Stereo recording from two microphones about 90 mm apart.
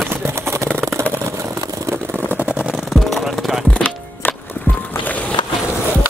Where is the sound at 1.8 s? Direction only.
25° right (ahead or behind).